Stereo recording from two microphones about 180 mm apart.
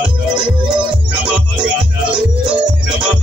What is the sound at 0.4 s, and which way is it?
Music, 25° right (ahead or behind).